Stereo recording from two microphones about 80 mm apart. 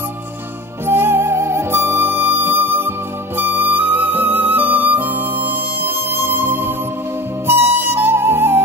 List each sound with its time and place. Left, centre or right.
0.8 s music: right
3.3 s flute: right